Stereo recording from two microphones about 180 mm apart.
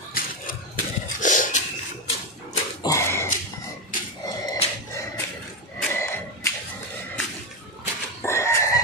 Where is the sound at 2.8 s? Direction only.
15° left (ahead or behind).